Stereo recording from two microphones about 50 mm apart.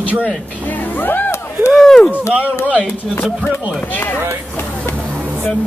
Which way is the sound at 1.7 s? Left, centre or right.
Centre.